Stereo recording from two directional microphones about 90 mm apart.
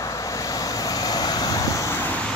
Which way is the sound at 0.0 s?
35° left (ahead or behind).